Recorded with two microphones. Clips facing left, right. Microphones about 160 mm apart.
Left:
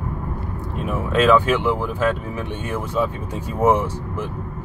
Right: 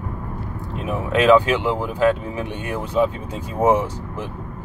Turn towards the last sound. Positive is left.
turn(degrees=-15)  # may be behind; listen again after turning